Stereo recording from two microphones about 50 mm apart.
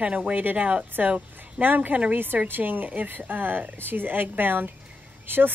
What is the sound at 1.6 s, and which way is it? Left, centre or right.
Speech, right.